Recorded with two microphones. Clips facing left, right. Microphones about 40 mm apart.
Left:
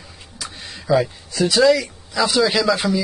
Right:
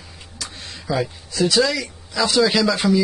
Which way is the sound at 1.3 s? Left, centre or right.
Left.